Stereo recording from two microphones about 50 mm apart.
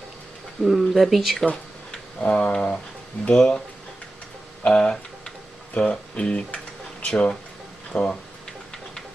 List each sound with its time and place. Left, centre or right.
0.6 s speech: centre
1.4 s speech: left
4.6 s speech: centre